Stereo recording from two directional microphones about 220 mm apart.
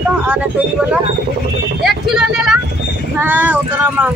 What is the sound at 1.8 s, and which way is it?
Speech, centre (ahead or behind).